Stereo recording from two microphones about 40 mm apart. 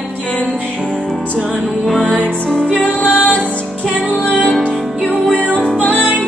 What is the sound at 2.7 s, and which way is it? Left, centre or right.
Music, left.